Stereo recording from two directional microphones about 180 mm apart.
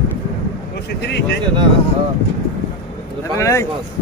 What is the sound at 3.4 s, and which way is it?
Speech, 15° left (ahead or behind).